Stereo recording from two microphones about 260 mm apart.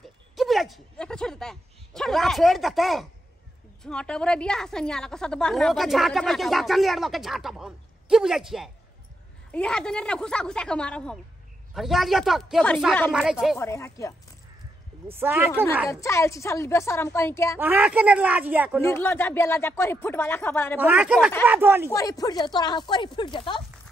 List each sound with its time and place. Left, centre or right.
0.4 s a woman's voice: centre
13.6 s speech: centre
15.0 s speech: centre
15.9 s speech: centre
17.6 s a woman's voice: centre
18.8 s speech: centre
20.8 s a woman's voice: centre
21.9 s speech: centre